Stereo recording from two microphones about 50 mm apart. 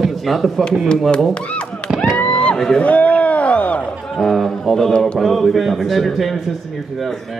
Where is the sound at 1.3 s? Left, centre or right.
Left.